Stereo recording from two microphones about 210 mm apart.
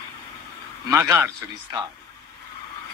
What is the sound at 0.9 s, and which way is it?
Speech, 15° right (ahead or behind).